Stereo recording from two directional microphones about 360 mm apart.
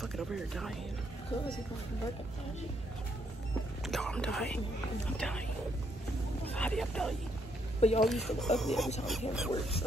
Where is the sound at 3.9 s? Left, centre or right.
Centre.